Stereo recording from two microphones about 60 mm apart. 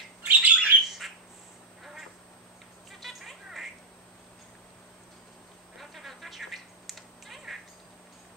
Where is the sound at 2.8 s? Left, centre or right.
Centre.